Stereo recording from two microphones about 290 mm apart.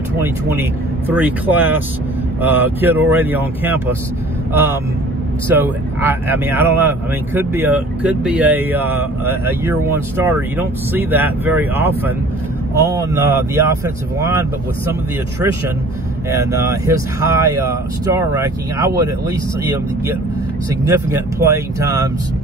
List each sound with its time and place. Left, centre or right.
0.2 s speech: centre
5.6 s speech: centre
16.3 s speech: centre
20.9 s speech: centre